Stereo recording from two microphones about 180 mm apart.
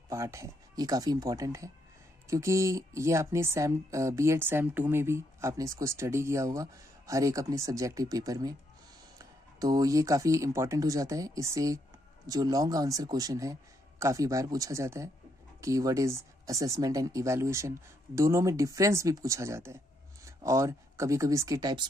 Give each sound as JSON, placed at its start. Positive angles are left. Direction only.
{"t": 0.1, "sound": "a man's voice", "side_deg": -15}